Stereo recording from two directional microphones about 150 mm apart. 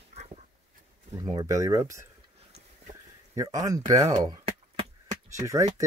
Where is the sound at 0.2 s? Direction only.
45° right (ahead or behind).